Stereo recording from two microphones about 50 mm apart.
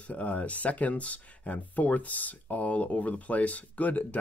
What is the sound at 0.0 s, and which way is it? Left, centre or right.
Speech, left.